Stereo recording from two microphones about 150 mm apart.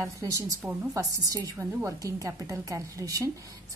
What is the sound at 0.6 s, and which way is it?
Speech, 10° right (ahead or behind).